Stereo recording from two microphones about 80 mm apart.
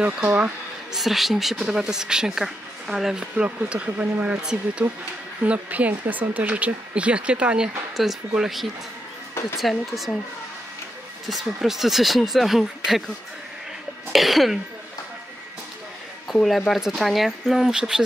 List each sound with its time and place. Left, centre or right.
0.0 s speech: centre
0.9 s speech: centre
11.2 s speech: centre
14.1 s speech: centre
16.4 s speech: centre